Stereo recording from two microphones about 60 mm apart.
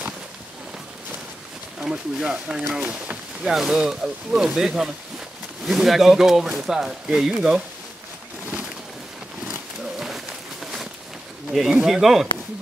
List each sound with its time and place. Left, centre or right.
1.8 s speech: centre
3.4 s speech: centre
9.9 s a sound: centre
11.7 s speech: centre